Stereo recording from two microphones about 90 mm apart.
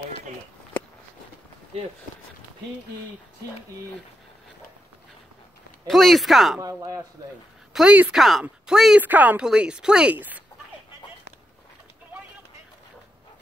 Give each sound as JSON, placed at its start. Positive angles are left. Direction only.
{"t": 5.9, "sound": "speech", "side_deg": 0}
{"t": 7.7, "sound": "speech", "side_deg": -5}
{"t": 9.0, "sound": "speech", "side_deg": -20}